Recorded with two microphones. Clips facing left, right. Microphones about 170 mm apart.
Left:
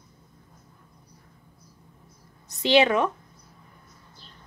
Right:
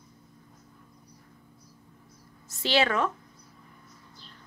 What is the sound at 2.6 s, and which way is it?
Speech, 20° left (ahead or behind).